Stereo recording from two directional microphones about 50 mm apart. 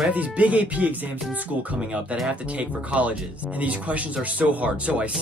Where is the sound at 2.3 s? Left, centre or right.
Right.